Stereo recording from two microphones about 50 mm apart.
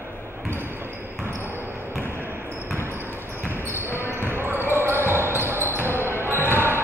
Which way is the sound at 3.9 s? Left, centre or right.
Left.